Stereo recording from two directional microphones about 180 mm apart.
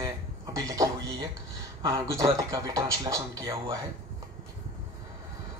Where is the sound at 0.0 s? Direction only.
20° right (ahead or behind).